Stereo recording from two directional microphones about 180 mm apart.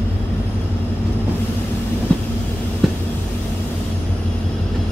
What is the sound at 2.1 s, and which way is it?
Train, 5° left (ahead or behind).